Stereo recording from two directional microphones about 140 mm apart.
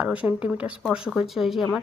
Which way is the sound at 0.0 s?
10° right (ahead or behind).